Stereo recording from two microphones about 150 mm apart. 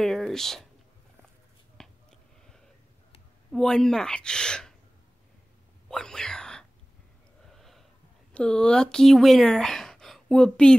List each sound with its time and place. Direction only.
0.0 s speech: centre (ahead or behind)
1.8 s a sound: 5° left (ahead or behind)
3.5 s speech: 5° left (ahead or behind)
5.9 s whispering: 5° left (ahead or behind)
7.5 s a sound: centre (ahead or behind)
8.3 s speech: 5° left (ahead or behind)